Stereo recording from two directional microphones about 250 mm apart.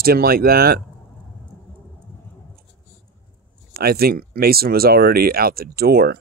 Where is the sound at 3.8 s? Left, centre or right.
Right.